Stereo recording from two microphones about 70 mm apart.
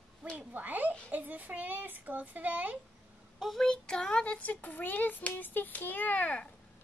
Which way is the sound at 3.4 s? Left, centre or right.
Centre.